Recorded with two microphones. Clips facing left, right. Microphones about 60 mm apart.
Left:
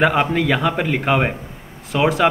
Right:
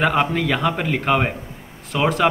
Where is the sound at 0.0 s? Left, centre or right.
Centre.